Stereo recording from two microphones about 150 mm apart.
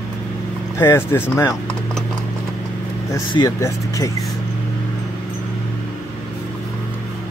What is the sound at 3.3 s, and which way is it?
Speech, 20° left (ahead or behind).